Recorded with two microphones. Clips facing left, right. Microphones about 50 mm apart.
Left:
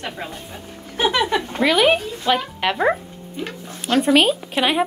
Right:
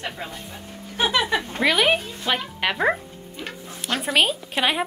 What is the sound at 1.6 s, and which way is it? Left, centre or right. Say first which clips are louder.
A man's voice: left 4 dB; centre.